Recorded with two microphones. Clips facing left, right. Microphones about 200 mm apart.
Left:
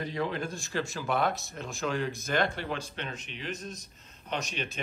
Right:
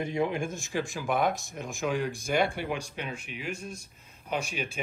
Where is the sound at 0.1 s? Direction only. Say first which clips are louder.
Right 3 dB; 15° right (ahead or behind).